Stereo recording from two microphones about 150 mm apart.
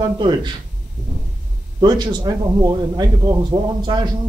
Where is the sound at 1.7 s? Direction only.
30° right (ahead or behind).